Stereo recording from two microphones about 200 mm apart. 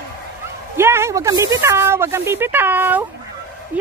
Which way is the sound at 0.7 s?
15° right (ahead or behind).